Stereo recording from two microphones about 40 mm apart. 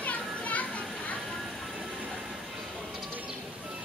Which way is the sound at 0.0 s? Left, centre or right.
Left.